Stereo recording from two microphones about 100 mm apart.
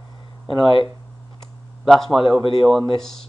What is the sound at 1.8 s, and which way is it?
Speech, centre (ahead or behind).